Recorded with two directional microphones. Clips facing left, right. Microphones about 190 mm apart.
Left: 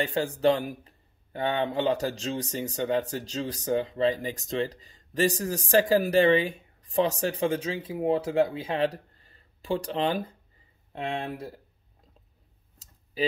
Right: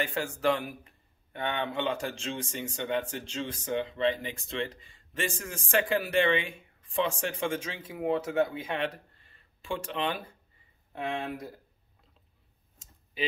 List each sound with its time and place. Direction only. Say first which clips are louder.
0.0 s a man's voice: left 5 dB; 35° left (ahead or behind)